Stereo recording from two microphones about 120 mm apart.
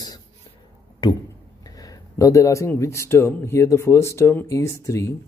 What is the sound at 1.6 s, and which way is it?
A man's voice, 30° left (ahead or behind).